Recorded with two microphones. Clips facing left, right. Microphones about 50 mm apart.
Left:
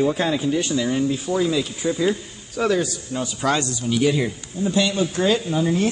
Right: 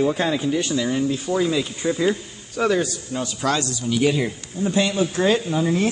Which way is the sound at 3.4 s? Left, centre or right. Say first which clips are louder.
Left 1 dB; centre.